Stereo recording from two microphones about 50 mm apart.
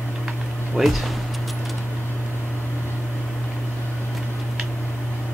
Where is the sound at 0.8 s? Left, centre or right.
Centre.